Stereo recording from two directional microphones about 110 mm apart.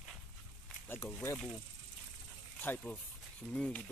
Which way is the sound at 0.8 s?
20° left (ahead or behind).